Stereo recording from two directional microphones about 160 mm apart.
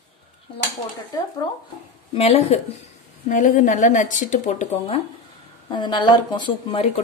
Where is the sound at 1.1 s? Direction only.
25° left (ahead or behind).